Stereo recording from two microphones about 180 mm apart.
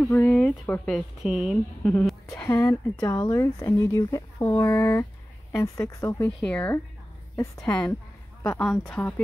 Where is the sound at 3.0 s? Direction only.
20° left (ahead or behind).